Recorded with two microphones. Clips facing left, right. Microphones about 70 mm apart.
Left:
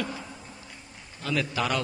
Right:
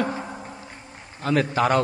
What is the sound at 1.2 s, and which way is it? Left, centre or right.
Speech, right.